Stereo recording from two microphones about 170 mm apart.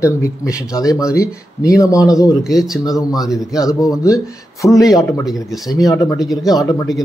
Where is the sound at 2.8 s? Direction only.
20° left (ahead or behind).